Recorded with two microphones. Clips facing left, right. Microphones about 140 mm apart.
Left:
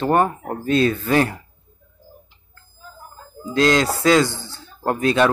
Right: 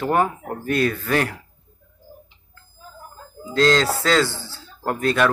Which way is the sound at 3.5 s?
15° left (ahead or behind).